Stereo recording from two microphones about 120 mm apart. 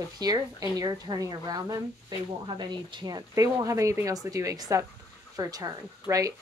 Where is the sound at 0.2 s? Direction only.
35° right (ahead or behind).